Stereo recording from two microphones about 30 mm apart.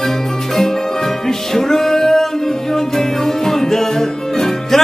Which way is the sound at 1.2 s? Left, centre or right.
Centre.